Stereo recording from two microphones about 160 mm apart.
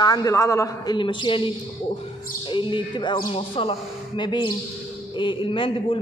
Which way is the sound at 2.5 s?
30° left (ahead or behind).